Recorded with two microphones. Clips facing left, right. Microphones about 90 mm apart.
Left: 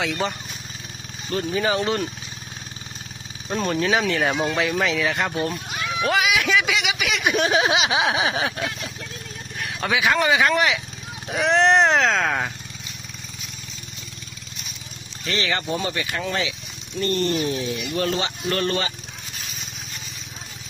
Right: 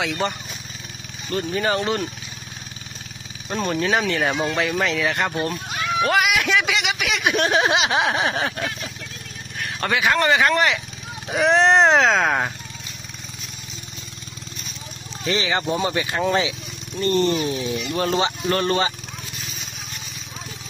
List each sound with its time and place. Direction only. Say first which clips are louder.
0.0 s speech: right 1 dB; centre (ahead or behind)
1.3 s speech: even; centre (ahead or behind)
3.4 s speech: even; centre (ahead or behind)
15.2 s speech: right 3 dB; 20° right (ahead or behind)